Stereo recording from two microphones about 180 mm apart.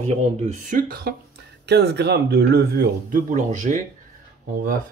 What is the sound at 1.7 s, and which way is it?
Speech, 65° right (ahead or behind).